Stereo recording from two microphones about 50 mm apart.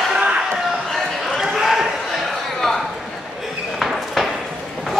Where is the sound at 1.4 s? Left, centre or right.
Centre.